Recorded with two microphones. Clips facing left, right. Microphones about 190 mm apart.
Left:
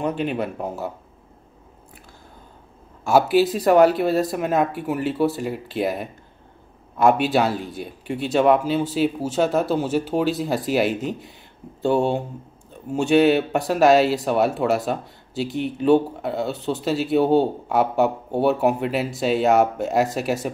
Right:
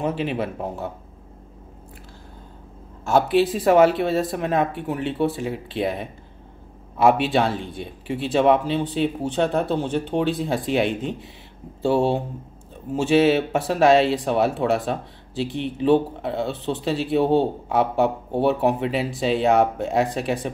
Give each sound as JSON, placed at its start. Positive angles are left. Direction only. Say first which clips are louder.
{"t": 0.0, "sound": "speech", "louder": "left 1 dB", "side_deg": 0}
{"t": 3.1, "sound": "speech", "louder": "left 1 dB", "side_deg": 5}